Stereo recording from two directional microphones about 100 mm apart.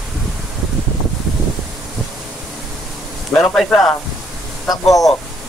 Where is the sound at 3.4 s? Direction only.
5° left (ahead or behind).